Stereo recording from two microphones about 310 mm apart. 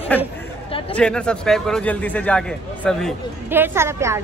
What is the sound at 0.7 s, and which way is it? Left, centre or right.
Chatter, centre.